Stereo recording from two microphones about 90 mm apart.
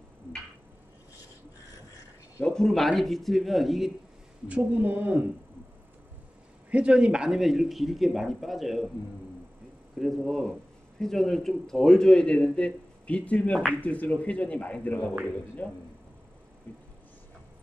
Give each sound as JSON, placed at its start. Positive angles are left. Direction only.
{"t": 2.4, "sound": "speech", "side_deg": 5}
{"t": 4.5, "sound": "speech", "side_deg": -15}
{"t": 6.7, "sound": "speech", "side_deg": -10}
{"t": 9.9, "sound": "speech", "side_deg": 0}
{"t": 16.7, "sound": "a sound", "side_deg": 15}